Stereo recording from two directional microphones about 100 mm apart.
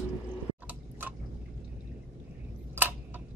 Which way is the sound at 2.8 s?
20° right (ahead or behind).